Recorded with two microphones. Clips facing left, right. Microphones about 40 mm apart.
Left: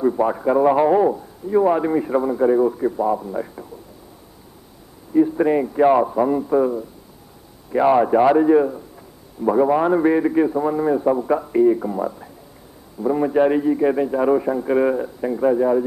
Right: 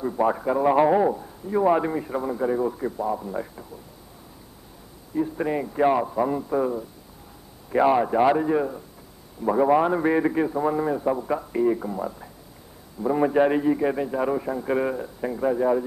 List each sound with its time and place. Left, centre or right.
0.2 s a man's voice: centre
0.7 s a man's voice: centre
1.9 s a man's voice: centre
3.0 s a man's voice: centre
3.3 s a man's voice: centre
5.1 s a man's voice: centre
13.2 s a man's voice: centre